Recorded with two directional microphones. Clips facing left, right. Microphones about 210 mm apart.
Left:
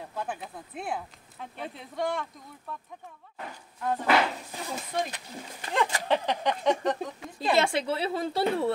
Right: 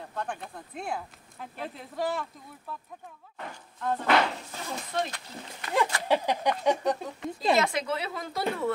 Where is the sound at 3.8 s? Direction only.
10° left (ahead or behind).